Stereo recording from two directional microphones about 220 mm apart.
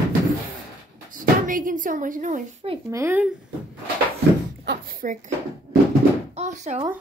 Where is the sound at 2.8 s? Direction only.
10° right (ahead or behind).